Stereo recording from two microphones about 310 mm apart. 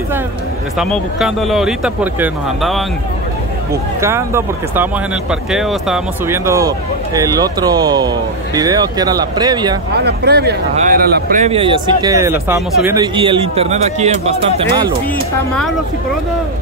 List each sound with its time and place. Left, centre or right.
0.7 s speech: centre
4.0 s speech: centre
9.9 s speech: right; by 14.9 s centre